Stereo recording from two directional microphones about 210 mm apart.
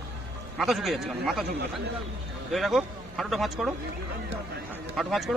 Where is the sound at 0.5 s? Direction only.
Centre (ahead or behind).